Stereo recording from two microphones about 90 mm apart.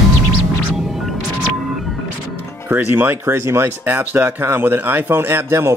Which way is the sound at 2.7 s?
20° right (ahead or behind).